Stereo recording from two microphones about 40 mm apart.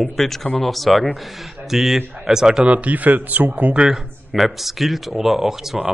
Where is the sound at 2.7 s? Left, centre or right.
Right.